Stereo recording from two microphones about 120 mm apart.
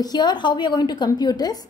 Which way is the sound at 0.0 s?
35° left (ahead or behind).